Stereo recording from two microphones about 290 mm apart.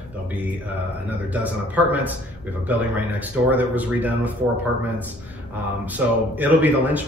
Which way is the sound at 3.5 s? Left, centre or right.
Centre.